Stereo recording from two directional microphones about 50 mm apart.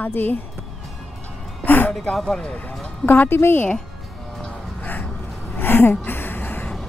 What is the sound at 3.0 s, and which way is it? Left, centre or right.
Speech, left.